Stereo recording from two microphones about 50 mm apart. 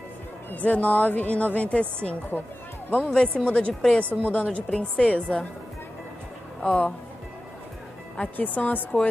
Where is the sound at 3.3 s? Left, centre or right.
Left.